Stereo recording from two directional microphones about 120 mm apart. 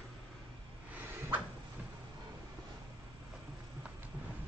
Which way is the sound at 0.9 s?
15° right (ahead or behind).